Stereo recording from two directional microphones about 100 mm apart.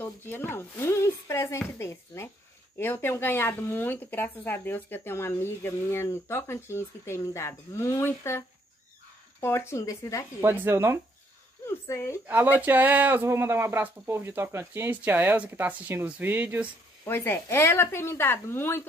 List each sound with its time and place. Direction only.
0.0 s speech: 20° left (ahead or behind)
10.4 s speech: 20° right (ahead or behind)
11.6 s speech: 25° left (ahead or behind)
12.3 s speech: 20° right (ahead or behind)
17.0 s speech: 25° left (ahead or behind)